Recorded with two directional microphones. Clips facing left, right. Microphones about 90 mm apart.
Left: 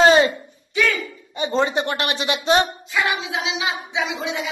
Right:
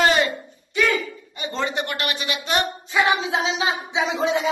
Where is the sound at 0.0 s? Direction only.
25° left (ahead or behind).